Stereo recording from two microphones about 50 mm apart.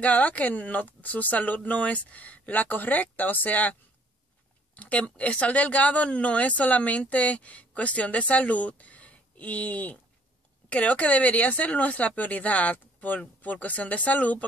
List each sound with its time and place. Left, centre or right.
0.0 s speech: left
4.7 s speech: left